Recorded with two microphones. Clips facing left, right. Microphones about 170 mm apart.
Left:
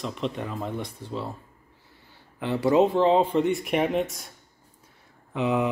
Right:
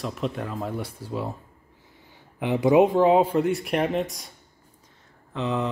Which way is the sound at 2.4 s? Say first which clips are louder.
Right 2 dB; 15° right (ahead or behind).